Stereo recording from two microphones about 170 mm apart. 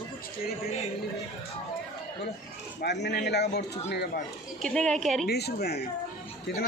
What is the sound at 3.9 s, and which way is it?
Speech, 90° left.